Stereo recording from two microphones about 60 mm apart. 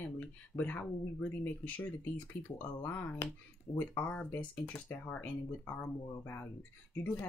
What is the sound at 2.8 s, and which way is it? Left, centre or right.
Speech, left.